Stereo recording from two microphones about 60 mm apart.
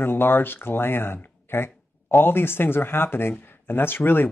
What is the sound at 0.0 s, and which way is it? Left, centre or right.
Speech, left.